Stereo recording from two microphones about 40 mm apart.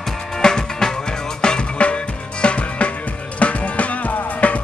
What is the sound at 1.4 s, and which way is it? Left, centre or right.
Music, left.